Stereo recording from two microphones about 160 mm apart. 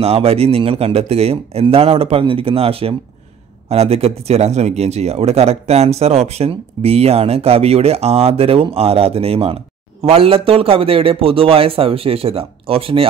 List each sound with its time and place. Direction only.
0.0 s speech: 40° right (ahead or behind)